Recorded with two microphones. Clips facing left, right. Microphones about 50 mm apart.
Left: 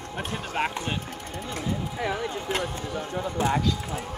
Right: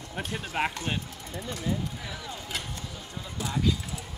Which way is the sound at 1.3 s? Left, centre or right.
Left.